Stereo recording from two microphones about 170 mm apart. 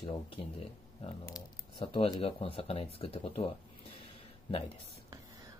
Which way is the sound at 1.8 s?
35° left (ahead or behind).